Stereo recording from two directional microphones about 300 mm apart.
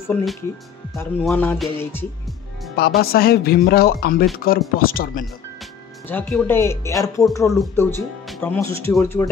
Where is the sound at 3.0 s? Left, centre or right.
Left.